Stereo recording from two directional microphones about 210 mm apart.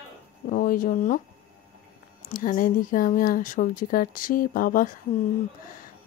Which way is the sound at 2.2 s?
40° left (ahead or behind).